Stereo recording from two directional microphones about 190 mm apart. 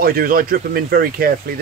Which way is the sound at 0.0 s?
50° right (ahead or behind).